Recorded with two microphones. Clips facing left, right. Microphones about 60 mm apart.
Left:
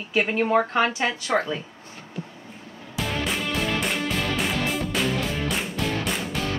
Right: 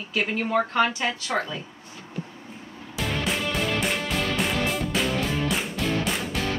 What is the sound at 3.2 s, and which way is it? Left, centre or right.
Music, centre.